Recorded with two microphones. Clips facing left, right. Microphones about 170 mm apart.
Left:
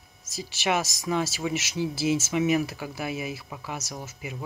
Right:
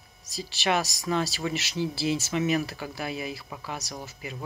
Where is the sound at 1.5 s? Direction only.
15° left (ahead or behind).